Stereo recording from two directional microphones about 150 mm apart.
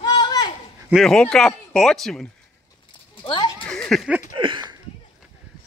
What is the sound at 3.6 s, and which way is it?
Speech, 5° left (ahead or behind).